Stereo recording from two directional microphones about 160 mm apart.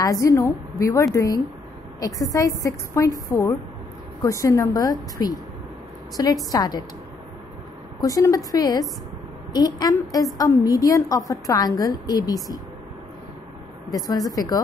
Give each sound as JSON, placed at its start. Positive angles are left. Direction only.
{"t": 0.0, "sound": "a woman's voice", "side_deg": 20}
{"t": 8.0, "sound": "a woman's voice", "side_deg": 20}
{"t": 13.9, "sound": "a woman's voice", "side_deg": 25}